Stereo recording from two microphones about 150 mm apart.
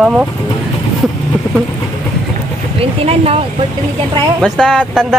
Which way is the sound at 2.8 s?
40° right (ahead or behind).